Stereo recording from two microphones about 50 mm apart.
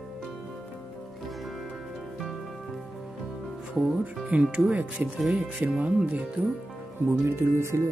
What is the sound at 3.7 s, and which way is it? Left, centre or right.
Speech, centre.